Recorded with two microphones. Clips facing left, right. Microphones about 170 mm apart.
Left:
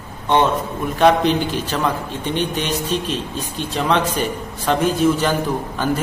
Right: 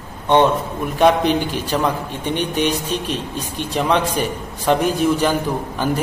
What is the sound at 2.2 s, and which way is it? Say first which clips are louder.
A man's voice: right 3 dB; 15° right (ahead or behind).